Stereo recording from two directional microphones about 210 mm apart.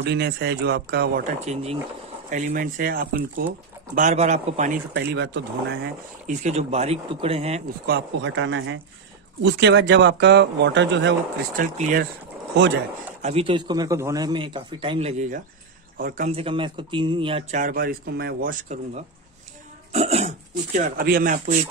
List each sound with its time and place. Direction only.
0.0 s speech: 55° right (ahead or behind)
1.2 s speech: 30° right (ahead or behind)
4.9 s speech: 55° right (ahead or behind)
6.2 s speech: 30° right (ahead or behind)
7.8 s speech: 55° right (ahead or behind)
11.5 s speech: 40° right (ahead or behind)
13.2 s a man's voice: 30° right (ahead or behind)
17.6 s speech: 45° right (ahead or behind)
21.0 s speech: 45° right (ahead or behind)